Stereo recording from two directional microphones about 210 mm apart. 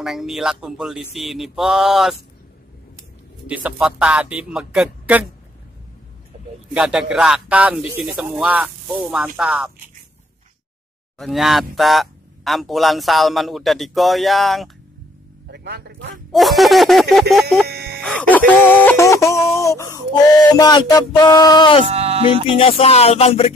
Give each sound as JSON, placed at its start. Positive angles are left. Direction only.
{"t": 0.0, "sound": "speech", "side_deg": 0}
{"t": 3.4, "sound": "speech", "side_deg": -5}
{"t": 6.7, "sound": "speech", "side_deg": -5}
{"t": 11.1, "sound": "speech", "side_deg": 0}
{"t": 15.5, "sound": "a man's voice", "side_deg": -55}
{"t": 16.3, "sound": "speech", "side_deg": 0}
{"t": 17.6, "sound": "music", "side_deg": -50}
{"t": 18.0, "sound": "a sound", "side_deg": 5}
{"t": 21.8, "sound": "speech", "side_deg": -30}
{"t": 22.6, "sound": "music", "side_deg": 30}